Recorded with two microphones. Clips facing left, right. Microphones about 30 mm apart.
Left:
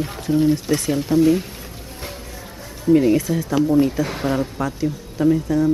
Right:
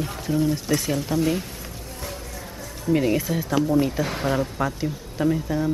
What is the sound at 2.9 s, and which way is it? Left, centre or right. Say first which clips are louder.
Speech: left 6 dB; centre.